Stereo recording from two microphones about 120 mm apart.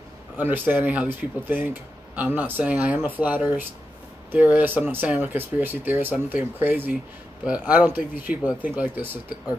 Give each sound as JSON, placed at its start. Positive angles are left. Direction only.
{"t": 0.4, "sound": "speech", "side_deg": -15}